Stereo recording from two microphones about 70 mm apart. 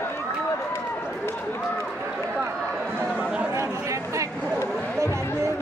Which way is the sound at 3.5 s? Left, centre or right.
Right.